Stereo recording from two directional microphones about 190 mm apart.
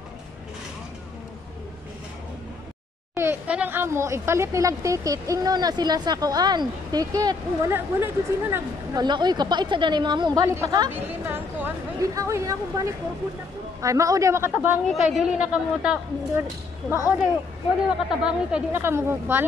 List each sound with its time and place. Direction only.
3.2 s speech: 10° right (ahead or behind)
14.9 s a woman's voice: centre (ahead or behind)
17.8 s speech: 5° right (ahead or behind)